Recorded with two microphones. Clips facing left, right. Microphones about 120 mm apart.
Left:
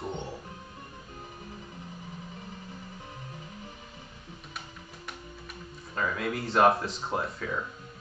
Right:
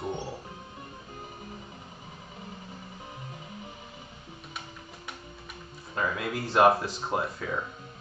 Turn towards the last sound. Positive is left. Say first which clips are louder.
# right 1 dB
turn(degrees=-5)  # may be behind; listen again after turning